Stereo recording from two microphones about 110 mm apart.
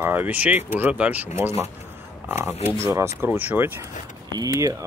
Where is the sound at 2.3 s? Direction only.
20° right (ahead or behind).